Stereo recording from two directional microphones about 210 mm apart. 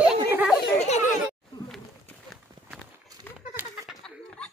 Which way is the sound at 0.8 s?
30° left (ahead or behind).